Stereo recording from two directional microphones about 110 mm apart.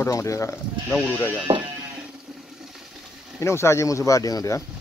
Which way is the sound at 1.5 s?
50° right (ahead or behind).